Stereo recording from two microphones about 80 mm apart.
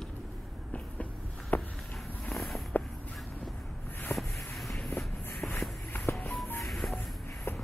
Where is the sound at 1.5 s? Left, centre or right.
Left.